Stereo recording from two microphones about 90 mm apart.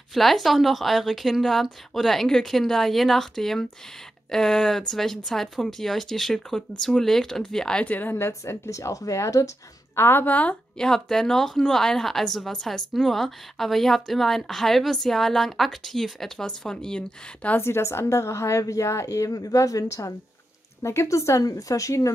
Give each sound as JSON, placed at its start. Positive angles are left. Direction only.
{"t": 0.1, "sound": "speech", "side_deg": 0}
{"t": 9.9, "sound": "speech", "side_deg": 25}
{"t": 17.6, "sound": "a woman's voice", "side_deg": 30}